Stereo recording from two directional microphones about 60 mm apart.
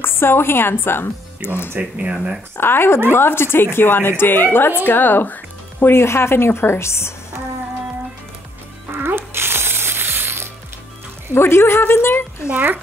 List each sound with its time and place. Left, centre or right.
0.0 s speech: left
1.8 s speech: centre
2.5 s a woman's voice: left
8.9 s music: right
11.3 s speech: left
12.4 s speech: right